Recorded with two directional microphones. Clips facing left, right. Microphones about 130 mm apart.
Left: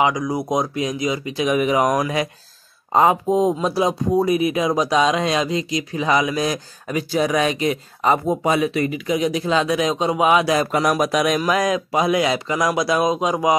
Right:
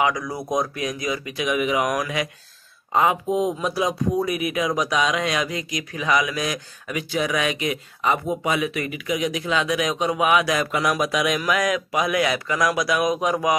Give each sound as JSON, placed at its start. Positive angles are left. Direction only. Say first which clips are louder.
{"t": 0.0, "sound": "speech", "louder": "left 4 dB", "side_deg": 20}